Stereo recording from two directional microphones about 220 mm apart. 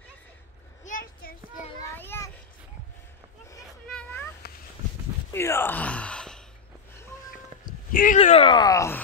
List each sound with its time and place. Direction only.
1.9 s child singing: 10° left (ahead or behind)
3.9 s cat: 10° left (ahead or behind)
5.3 s gasp: 10° left (ahead or behind)
7.9 s speech: 35° left (ahead or behind); by 9.0 s 15° left (ahead or behind)